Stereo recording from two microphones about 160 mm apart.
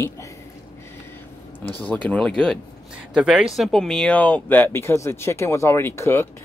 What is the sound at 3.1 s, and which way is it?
Speech, 5° right (ahead or behind).